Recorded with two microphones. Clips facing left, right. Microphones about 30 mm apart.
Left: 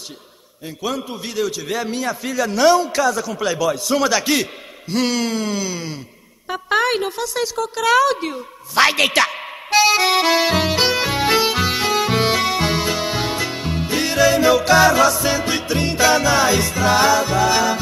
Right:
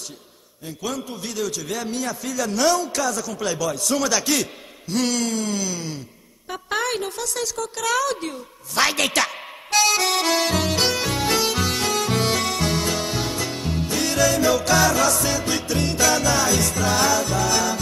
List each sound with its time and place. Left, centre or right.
0.7 s a man's voice: left
6.5 s a sound: left
15.2 s music: left